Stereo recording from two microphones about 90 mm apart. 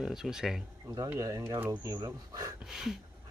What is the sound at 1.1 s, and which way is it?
Speech, 40° right (ahead or behind).